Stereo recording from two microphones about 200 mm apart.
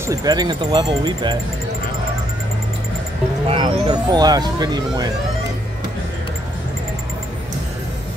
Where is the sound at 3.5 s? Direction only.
25° right (ahead or behind).